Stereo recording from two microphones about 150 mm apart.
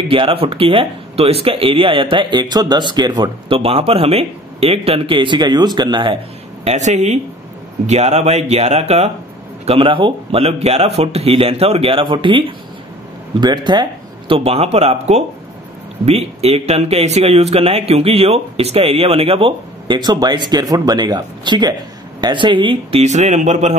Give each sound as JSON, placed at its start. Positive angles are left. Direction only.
{"t": 0.1, "sound": "speech", "side_deg": -40}
{"t": 6.6, "sound": "speech", "side_deg": -50}